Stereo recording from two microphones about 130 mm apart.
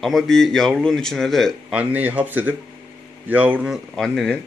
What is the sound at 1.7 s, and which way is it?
Speech, 10° right (ahead or behind).